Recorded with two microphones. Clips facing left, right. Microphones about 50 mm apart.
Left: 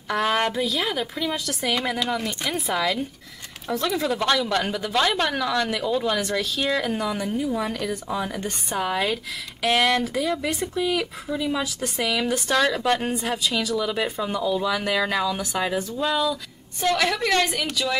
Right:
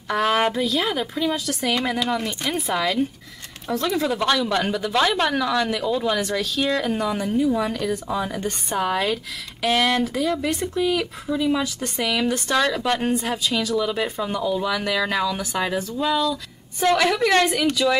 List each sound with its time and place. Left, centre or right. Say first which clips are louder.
0.1 s speech: right 2 dB; centre
7.2 s speech: right 4 dB; centre
16.8 s a woman's voice: right 4 dB; centre